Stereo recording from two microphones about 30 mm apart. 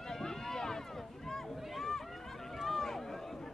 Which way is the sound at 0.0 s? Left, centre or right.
Centre.